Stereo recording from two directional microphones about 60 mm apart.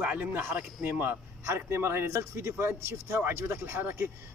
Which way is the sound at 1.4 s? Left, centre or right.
Right.